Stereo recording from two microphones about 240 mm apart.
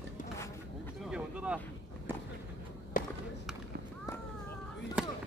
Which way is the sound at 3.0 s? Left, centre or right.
Left.